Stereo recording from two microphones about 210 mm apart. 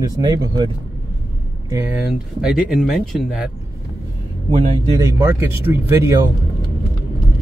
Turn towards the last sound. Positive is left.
turn(degrees=-15)  # may be behind; listen again after turning